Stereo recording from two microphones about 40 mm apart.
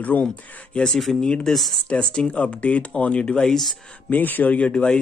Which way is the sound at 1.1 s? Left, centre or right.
Centre.